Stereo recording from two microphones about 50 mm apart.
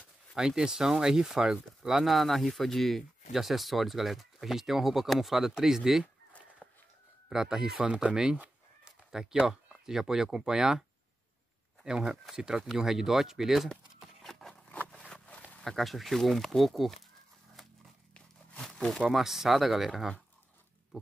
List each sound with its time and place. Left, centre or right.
0.4 s speech: centre
7.2 s speech: centre
7.8 s speech: right
8.8 s a sound: centre
9.5 s speech: centre
11.8 s speech: centre
14.2 s a sound: centre
15.2 s a sound: left
15.6 s speech: centre
19.0 s speech: centre